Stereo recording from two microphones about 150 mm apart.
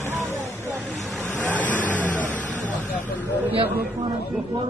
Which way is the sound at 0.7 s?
Centre (ahead or behind).